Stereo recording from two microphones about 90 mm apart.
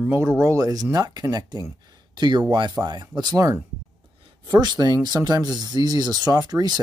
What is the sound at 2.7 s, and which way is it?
Speech, 45° right (ahead or behind).